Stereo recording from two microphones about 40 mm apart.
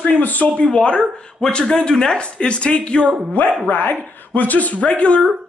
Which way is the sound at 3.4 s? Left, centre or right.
Left.